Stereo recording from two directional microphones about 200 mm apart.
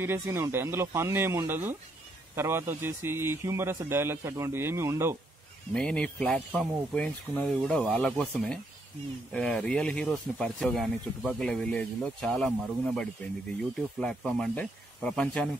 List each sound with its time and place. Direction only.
0.0 s a man's voice: 10° right (ahead or behind)
5.7 s speech: 5° left (ahead or behind)